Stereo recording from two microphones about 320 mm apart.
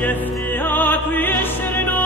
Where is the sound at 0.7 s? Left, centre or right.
Centre.